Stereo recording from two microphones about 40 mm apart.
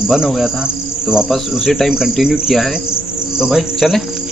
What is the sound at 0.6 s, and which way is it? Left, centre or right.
Insect, centre.